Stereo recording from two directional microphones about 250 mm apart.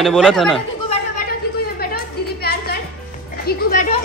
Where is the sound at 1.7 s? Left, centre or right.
Left.